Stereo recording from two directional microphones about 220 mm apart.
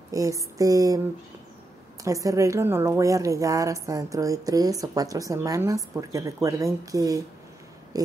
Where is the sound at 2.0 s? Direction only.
15° right (ahead or behind).